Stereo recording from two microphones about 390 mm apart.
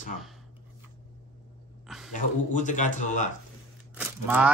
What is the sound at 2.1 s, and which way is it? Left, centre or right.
Speech, centre.